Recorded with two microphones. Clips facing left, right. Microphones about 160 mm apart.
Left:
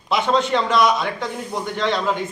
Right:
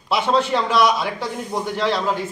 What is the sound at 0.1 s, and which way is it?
A man's voice, 10° right (ahead or behind).